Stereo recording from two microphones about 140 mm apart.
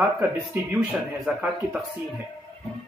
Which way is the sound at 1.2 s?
10° right (ahead or behind).